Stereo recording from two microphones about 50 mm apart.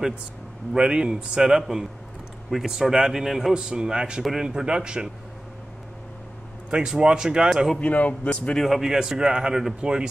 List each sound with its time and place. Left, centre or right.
0.7 s speech: centre
4.2 s speech: centre
4.5 s speech: centre
6.7 s speech: centre
7.8 s speech: left
8.5 s speech: centre